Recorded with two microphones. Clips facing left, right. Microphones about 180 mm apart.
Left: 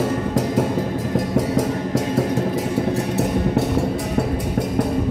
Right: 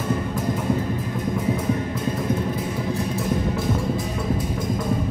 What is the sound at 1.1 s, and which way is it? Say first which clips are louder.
Music: left 6 dB; 90° left.